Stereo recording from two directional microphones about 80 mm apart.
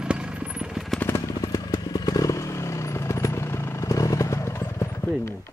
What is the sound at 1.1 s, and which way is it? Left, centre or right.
Motorcycle, left.